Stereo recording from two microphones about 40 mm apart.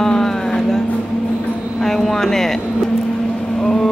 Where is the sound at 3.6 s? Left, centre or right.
Centre.